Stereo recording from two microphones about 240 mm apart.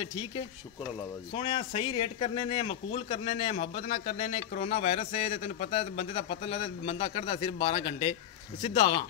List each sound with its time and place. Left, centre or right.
1.3 s speech: left